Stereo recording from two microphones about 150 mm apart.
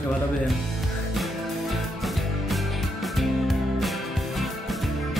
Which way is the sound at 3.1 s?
Centre (ahead or behind).